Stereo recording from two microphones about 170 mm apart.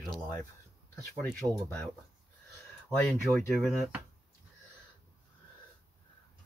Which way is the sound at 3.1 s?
Centre (ahead or behind).